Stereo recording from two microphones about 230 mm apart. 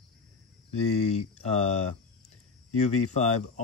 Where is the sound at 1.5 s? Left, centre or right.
Left.